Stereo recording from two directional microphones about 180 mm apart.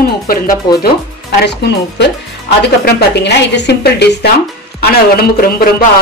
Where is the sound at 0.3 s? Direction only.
55° left (ahead or behind).